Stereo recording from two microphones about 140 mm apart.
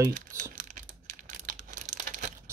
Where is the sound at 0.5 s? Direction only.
65° right (ahead or behind).